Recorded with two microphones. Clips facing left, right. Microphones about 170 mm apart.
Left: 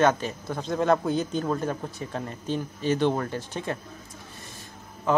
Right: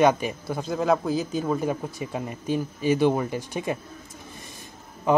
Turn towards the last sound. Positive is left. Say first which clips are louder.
# right 2 dB
turn(degrees=-15)  # may be behind; listen again after turning